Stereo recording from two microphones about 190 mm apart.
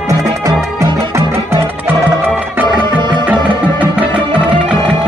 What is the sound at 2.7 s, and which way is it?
Music, 25° right (ahead or behind).